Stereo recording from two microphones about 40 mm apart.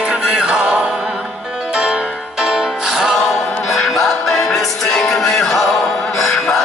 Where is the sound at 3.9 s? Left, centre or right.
Centre.